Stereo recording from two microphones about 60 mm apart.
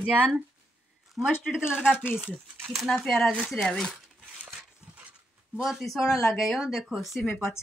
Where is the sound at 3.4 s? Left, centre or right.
Centre.